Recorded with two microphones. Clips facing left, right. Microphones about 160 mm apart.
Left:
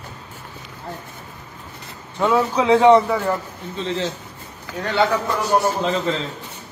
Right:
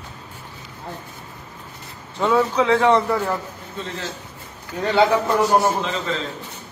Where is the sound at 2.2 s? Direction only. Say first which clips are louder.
Even; 5° left (ahead or behind).